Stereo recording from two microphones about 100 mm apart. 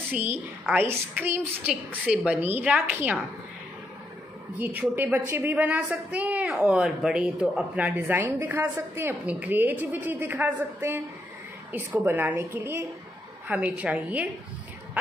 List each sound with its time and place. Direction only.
0.1 s a woman's voice: 20° right (ahead or behind)
4.6 s a woman's voice: 20° right (ahead or behind)
7.7 s a woman's voice: 15° right (ahead or behind)
9.2 s a woman's voice: 15° right (ahead or behind)